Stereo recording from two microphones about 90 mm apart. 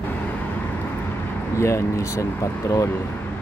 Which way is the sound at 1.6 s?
30° left (ahead or behind).